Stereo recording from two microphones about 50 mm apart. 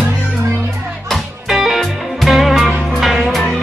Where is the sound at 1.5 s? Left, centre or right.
Centre.